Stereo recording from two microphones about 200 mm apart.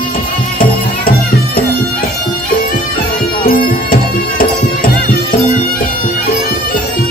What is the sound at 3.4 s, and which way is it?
Music, 45° left (ahead or behind).